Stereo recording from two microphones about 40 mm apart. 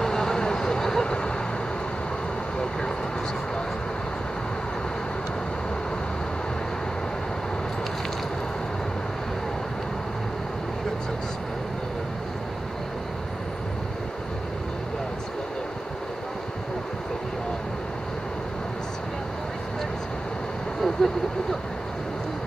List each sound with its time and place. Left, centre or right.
0.0 s vehicle: centre
20.8 s vehicle: centre